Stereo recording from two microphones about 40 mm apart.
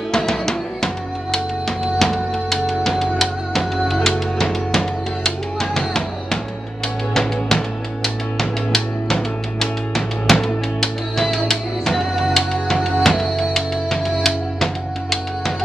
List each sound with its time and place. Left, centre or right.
0.1 s music: centre